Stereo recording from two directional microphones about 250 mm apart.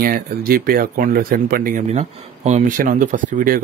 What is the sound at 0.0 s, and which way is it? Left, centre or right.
A man's voice, right.